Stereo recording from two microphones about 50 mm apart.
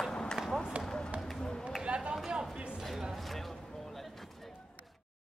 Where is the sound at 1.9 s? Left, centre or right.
Right.